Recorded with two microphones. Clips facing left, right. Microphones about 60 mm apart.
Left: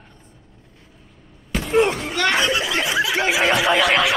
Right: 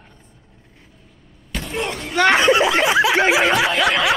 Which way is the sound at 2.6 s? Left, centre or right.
Right.